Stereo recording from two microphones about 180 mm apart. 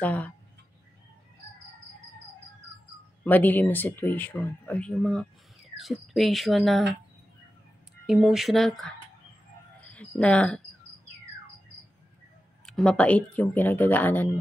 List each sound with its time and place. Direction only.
0.0 s speech: 10° left (ahead or behind)
3.3 s speech: 10° left (ahead or behind)
8.1 s speech: centre (ahead or behind)
9.8 s cricket: 5° left (ahead or behind)
12.6 s speech: 5° left (ahead or behind)